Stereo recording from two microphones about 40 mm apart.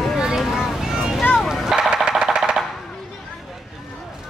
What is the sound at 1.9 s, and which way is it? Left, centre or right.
Music, centre.